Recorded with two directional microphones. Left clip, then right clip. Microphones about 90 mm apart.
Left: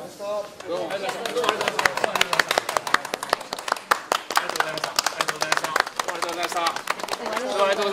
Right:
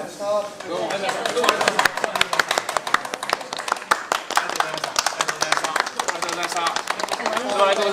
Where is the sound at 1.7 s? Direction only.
90° right.